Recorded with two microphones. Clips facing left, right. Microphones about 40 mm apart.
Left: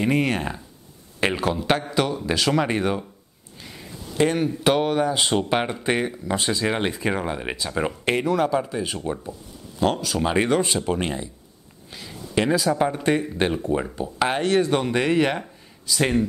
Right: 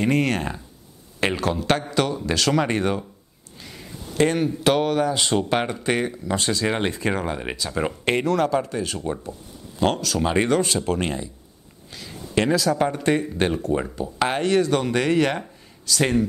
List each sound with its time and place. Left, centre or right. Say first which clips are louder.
0.0 s speech: even; centre
3.6 s a sound: even; centre
4.6 s speech: even; centre
6.6 s speech: even; centre
10.2 s speech: even; centre
12.4 s speech: even; centre
14.4 s speech: right 1 dB; centre